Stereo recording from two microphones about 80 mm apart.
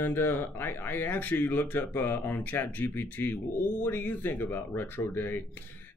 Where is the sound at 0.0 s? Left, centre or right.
Left.